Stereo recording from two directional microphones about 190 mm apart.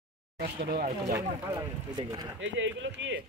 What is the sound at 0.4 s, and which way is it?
Speech, 55° right (ahead or behind).